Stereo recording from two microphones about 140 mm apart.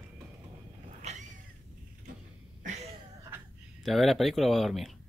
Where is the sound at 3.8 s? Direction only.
Centre (ahead or behind).